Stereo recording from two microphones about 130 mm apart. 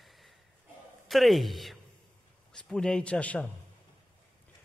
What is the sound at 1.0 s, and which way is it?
A man's voice, centre (ahead or behind).